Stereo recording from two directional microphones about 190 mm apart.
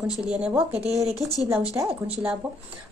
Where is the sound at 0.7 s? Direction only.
35° right (ahead or behind).